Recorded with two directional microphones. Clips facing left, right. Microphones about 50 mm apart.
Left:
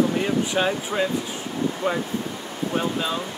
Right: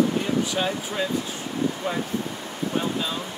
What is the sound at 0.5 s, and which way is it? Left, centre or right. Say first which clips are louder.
Speech: left 3 dB; centre.